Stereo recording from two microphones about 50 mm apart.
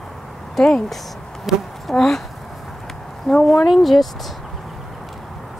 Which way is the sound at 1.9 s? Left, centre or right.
Centre.